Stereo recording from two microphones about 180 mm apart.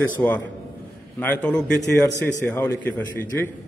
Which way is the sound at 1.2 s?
10° left (ahead or behind).